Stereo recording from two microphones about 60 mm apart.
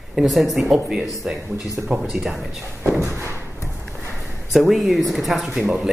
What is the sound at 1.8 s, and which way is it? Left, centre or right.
Speech, centre.